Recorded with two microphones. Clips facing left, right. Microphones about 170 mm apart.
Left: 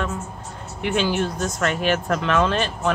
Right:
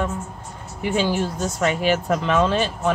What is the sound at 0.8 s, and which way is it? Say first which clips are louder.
Speech: even; 70° left (ahead or behind).